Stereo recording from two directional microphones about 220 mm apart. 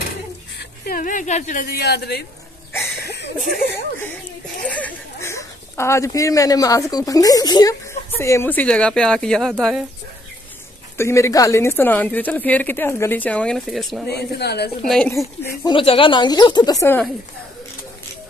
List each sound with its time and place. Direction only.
0.6 s speech: 40° left (ahead or behind)
3.0 s a sound: 50° left (ahead or behind)
4.6 s speech: 5° left (ahead or behind)
11.0 s speech: 15° left (ahead or behind)
14.0 s speech: 45° left (ahead or behind)
14.9 s speech: centre (ahead or behind)
15.7 s speech: 25° left (ahead or behind)